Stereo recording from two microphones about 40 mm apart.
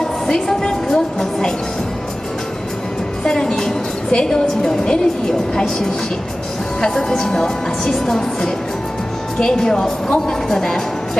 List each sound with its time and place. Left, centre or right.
0.0 s a woman's voice: centre
3.3 s a woman's voice: centre